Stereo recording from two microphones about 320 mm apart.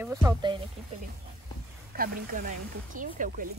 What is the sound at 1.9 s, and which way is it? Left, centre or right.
Speech, right.